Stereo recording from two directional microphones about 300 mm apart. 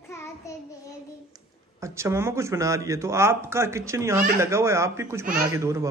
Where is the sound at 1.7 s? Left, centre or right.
Centre.